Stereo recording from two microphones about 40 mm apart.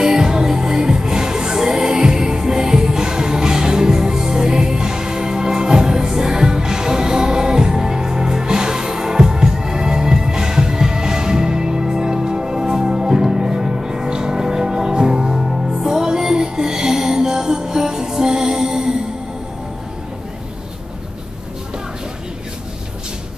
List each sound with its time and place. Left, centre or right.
0.0 s music: centre